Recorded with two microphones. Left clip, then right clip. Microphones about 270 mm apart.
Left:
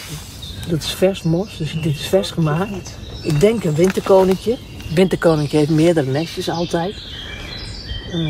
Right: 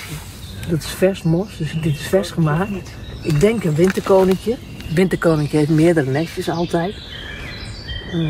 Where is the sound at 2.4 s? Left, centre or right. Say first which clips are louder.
Even; centre.